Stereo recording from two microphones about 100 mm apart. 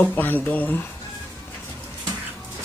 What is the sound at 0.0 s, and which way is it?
Speech, 20° left (ahead or behind).